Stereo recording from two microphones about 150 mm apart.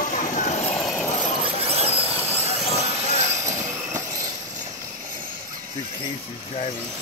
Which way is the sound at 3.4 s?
20° right (ahead or behind).